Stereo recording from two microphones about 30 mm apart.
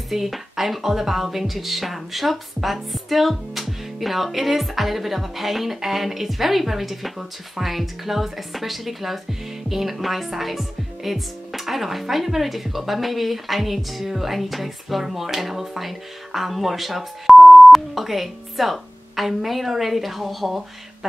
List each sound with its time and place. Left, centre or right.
0.1 s speech: centre